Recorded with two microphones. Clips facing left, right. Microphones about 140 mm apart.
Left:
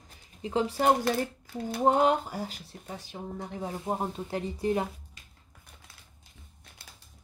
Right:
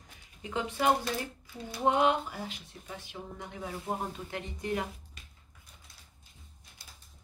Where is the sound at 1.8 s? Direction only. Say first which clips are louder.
Left 3 dB; 40° left (ahead or behind).